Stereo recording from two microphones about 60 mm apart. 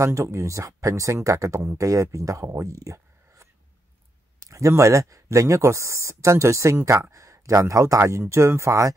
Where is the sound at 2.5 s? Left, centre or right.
Right.